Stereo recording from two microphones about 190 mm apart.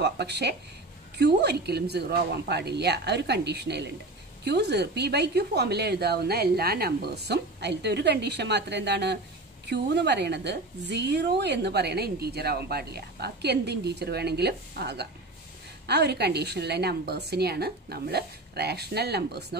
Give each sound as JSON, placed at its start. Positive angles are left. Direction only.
{"t": 0.0, "sound": "a woman's voice", "side_deg": -60}